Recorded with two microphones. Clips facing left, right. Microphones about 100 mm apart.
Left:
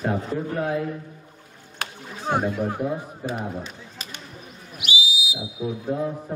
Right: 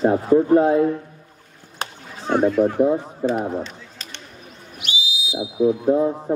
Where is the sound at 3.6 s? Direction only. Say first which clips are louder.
Even; 10° left (ahead or behind).